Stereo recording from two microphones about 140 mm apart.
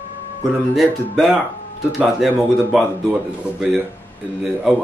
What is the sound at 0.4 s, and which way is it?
A man's voice, centre (ahead or behind).